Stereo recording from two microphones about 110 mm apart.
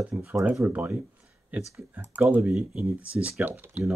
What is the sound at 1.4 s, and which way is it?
Speech, 5° right (ahead or behind).